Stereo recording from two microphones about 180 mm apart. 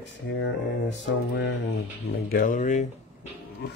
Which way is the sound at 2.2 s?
50° left (ahead or behind).